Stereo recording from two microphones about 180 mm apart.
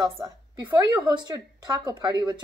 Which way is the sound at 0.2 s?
20° right (ahead or behind).